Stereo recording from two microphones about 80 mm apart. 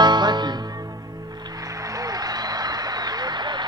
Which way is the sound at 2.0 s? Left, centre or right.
Right.